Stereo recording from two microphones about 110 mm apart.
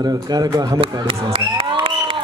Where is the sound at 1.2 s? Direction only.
50° right (ahead or behind).